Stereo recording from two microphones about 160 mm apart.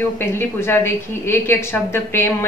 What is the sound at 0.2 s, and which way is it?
A woman's voice, 15° left (ahead or behind).